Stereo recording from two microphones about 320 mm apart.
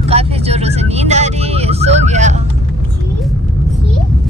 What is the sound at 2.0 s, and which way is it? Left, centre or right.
Speech, right.